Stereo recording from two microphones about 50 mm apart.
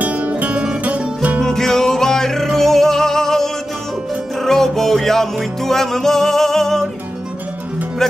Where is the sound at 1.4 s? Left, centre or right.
Centre.